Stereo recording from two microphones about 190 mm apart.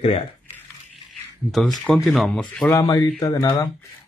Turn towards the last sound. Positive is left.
turn(degrees=15)  # may be behind; listen again after turning